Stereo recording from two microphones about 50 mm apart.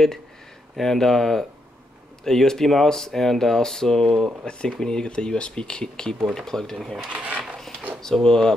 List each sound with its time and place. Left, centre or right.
0.7 s speech: centre
7.1 s speech: right
8.0 s speech: centre